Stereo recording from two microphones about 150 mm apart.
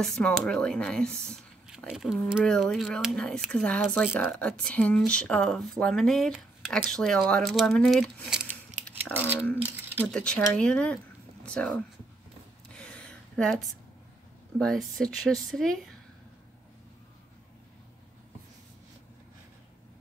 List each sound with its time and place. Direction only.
0.0 s speech: 5° left (ahead or behind)
10.0 s speech: 5° left (ahead or behind)
12.7 s a sound: 5° left (ahead or behind)
14.6 s speech: 5° left (ahead or behind)